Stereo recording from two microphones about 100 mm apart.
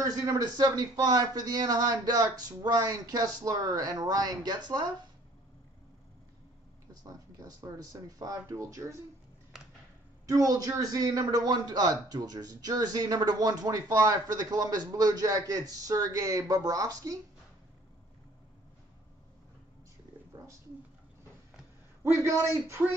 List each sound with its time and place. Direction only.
0.0 s a man's voice: 35° right (ahead or behind)
7.0 s a man's voice: 35° right (ahead or behind)
10.2 s a man's voice: 35° right (ahead or behind)
22.0 s a man's voice: 30° right (ahead or behind)
22.8 s speech: 15° right (ahead or behind)